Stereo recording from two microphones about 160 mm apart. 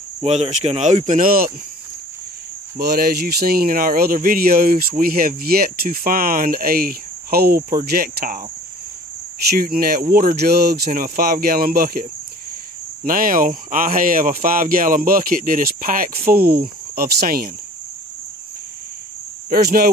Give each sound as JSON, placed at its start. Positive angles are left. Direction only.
{"t": 0.2, "sound": "speech", "side_deg": -40}
{"t": 2.8, "sound": "speech", "side_deg": -80}
{"t": 9.5, "sound": "speech", "side_deg": -65}
{"t": 19.5, "sound": "speech", "side_deg": -70}